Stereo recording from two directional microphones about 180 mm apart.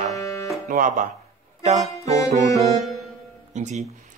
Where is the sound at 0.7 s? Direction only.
45° right (ahead or behind).